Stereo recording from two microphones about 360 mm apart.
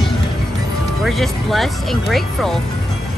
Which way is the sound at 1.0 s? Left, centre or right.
Centre.